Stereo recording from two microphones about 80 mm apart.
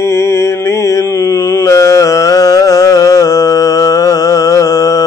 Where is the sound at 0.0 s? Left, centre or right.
Left.